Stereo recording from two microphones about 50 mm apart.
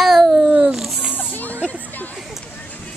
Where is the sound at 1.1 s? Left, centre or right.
Left.